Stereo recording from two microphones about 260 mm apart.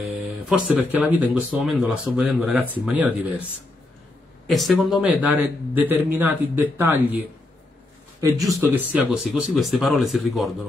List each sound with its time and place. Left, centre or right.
0.0 s speech: centre
4.5 s speech: centre
8.7 s speech: centre